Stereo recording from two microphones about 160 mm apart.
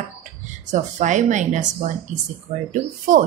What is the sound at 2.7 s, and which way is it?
Speech, 55° right (ahead or behind).